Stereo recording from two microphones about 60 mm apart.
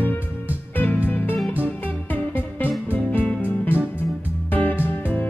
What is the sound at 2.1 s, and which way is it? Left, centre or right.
Music, left.